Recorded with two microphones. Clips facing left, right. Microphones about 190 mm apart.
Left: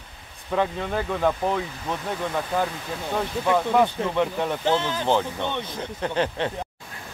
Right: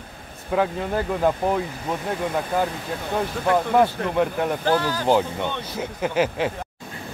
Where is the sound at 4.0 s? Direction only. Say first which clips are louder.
Right 2 dB; 20° left (ahead or behind).